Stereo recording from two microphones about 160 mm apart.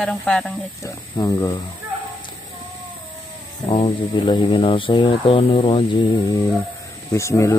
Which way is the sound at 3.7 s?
30° left (ahead or behind).